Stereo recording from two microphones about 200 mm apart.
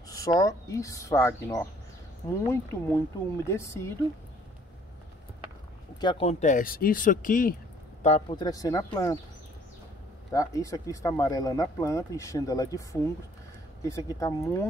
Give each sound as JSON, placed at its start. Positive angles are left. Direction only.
{"t": 0.1, "sound": "speech", "side_deg": 15}
{"t": 5.9, "sound": "speech", "side_deg": 25}
{"t": 8.0, "sound": "speech", "side_deg": 30}
{"t": 10.3, "sound": "speech", "side_deg": 15}
{"t": 13.8, "sound": "speech", "side_deg": 15}